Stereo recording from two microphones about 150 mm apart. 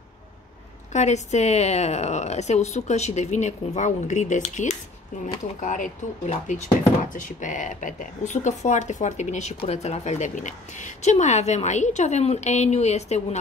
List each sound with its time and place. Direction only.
0.9 s a woman's voice: 50° left (ahead or behind)